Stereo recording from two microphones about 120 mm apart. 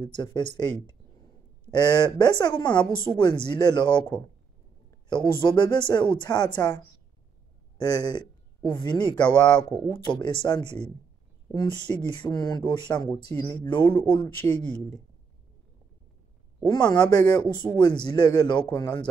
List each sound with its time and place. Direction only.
0.0 s speech: 40° left (ahead or behind)
5.1 s speech: 40° left (ahead or behind)
13.3 s speech: 15° left (ahead or behind)
14.1 s speech: 40° left (ahead or behind)
16.6 s speech: 35° left (ahead or behind)